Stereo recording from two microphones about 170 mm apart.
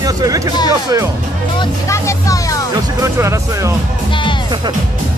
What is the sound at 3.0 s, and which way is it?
Speech, 15° right (ahead or behind).